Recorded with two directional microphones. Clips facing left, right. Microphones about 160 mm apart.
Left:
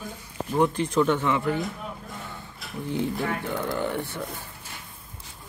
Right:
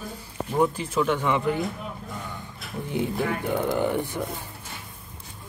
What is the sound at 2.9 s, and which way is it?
Speech, 15° right (ahead or behind).